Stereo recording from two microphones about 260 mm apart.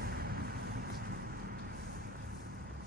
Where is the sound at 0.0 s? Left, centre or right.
Right.